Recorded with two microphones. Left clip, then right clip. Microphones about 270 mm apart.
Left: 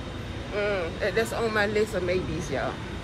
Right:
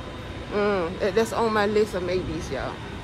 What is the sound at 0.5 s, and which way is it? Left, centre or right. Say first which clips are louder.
Speech: right 4 dB; right.